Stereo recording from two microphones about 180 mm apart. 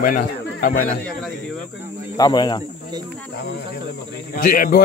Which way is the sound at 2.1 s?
20° left (ahead or behind).